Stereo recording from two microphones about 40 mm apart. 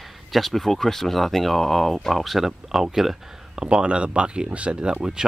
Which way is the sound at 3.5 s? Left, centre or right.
Centre.